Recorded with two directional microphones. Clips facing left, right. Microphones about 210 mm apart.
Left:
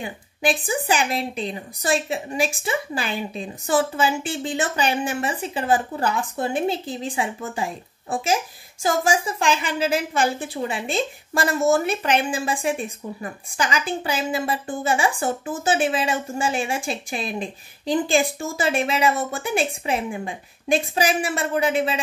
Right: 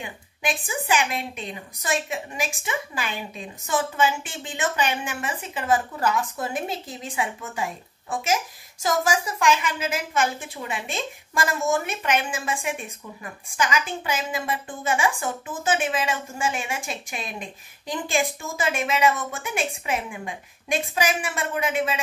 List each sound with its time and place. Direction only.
0.0 s a woman's voice: 35° left (ahead or behind)